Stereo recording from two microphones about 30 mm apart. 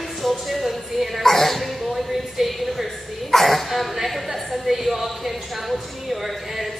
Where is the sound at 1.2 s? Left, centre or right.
Centre.